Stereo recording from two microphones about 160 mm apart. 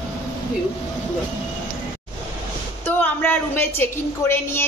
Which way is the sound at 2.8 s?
10° left (ahead or behind).